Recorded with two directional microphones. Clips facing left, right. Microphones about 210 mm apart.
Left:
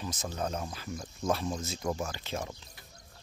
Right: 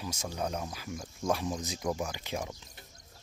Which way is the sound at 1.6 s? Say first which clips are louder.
Even; 15° right (ahead or behind).